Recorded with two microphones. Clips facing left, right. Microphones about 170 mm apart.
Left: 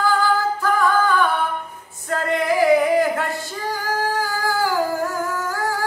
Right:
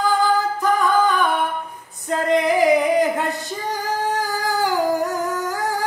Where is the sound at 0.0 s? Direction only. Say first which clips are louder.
Right 1 dB; 20° right (ahead or behind).